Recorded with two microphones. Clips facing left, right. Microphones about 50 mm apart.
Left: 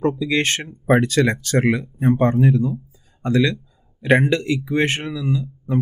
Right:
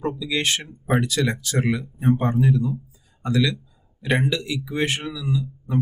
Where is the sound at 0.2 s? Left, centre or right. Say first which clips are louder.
Left 4 dB; left.